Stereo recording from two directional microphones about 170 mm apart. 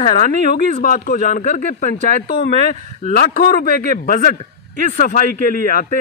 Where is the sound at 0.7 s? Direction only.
50° left (ahead or behind).